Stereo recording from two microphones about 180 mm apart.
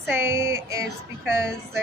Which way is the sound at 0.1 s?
15° right (ahead or behind).